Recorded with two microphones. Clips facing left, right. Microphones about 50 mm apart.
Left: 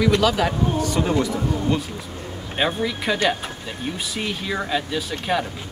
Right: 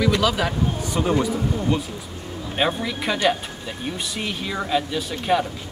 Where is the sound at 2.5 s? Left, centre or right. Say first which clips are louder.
Even; centre.